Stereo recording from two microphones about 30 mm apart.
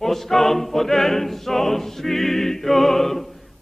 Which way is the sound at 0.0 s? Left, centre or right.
Centre.